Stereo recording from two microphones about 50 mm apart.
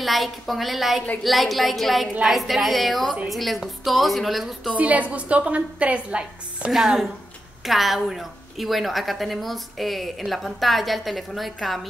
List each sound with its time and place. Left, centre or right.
0.0 s a woman's voice: centre
4.7 s a woman's voice: right
6.7 s a woman's voice: centre